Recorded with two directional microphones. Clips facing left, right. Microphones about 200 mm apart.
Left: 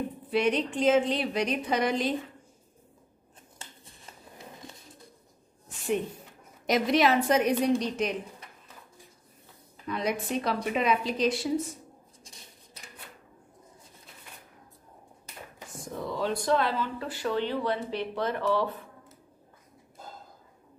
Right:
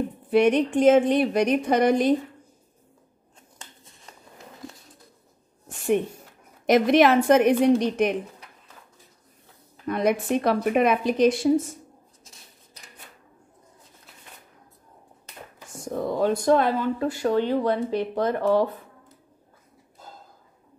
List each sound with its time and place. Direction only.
0.3 s speech: 50° right (ahead or behind)
5.7 s a sound: 50° right (ahead or behind)
6.6 s a woman's voice: 55° right (ahead or behind)
9.8 s speech: 55° right (ahead or behind)
12.2 s a sound: centre (ahead or behind)
15.8 s speech: 50° right (ahead or behind)